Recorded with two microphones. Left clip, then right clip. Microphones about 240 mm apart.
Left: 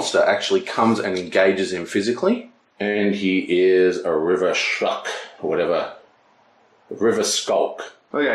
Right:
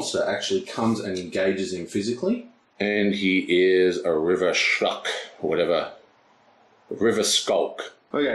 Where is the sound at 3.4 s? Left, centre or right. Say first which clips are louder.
Left 3 dB; left.